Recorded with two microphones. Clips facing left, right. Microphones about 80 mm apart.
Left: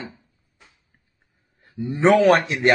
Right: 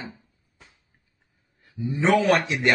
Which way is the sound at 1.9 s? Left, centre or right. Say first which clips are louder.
Left 5 dB; left.